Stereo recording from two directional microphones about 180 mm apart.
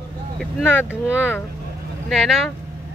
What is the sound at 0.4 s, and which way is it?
A woman's voice, 5° right (ahead or behind).